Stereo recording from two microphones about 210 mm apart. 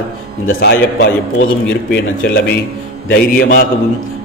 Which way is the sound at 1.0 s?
55° left (ahead or behind).